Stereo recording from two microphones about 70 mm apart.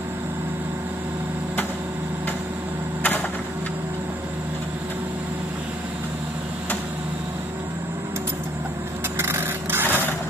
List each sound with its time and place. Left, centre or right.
9.2 s vehicle: right